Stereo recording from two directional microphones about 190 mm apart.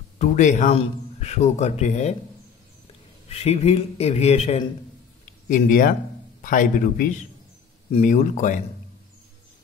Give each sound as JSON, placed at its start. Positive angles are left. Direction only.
{"t": 0.2, "sound": "speech", "side_deg": 40}
{"t": 3.3, "sound": "speech", "side_deg": 35}
{"t": 5.2, "sound": "a sound", "side_deg": 45}
{"t": 6.4, "sound": "a man's voice", "side_deg": 45}